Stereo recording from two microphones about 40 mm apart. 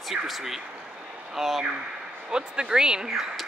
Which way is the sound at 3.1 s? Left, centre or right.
Centre.